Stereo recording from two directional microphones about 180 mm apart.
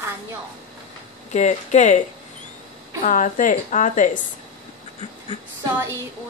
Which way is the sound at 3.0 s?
45° left (ahead or behind).